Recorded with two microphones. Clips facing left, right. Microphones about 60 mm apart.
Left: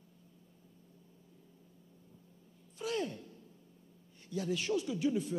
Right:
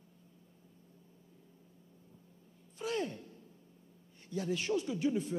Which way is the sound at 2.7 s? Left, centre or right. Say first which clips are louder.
Even; right.